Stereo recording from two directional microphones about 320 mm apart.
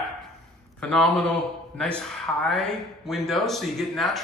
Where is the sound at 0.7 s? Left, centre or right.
Centre.